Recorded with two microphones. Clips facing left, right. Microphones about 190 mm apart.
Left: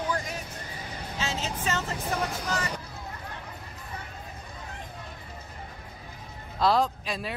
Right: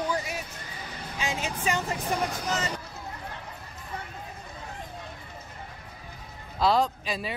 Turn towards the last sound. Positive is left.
turn(degrees=0)  # may be behind; listen again after turning